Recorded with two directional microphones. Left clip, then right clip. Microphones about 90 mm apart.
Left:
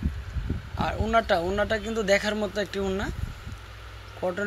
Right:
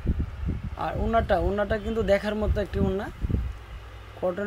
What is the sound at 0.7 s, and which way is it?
Speech, 35° right (ahead or behind).